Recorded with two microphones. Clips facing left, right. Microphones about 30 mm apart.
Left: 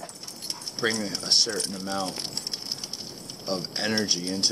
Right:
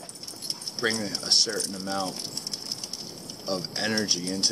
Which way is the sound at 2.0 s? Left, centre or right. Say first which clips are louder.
Left 1 dB; left.